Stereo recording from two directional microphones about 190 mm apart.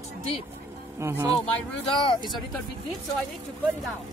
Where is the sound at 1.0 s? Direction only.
15° right (ahead or behind).